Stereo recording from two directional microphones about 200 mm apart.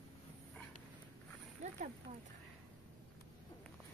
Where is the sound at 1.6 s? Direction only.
40° right (ahead or behind).